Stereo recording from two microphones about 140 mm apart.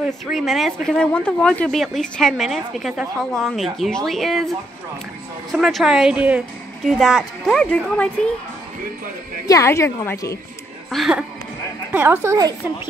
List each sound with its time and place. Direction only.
0.0 s speech: centre (ahead or behind)
5.5 s speech: centre (ahead or behind)
9.5 s a woman's voice: 20° left (ahead or behind)
10.9 s speech: 5° right (ahead or behind)
11.9 s a woman's voice: 15° right (ahead or behind)